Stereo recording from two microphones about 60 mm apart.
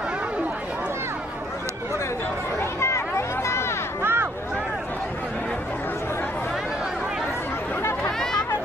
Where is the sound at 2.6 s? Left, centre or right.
Left.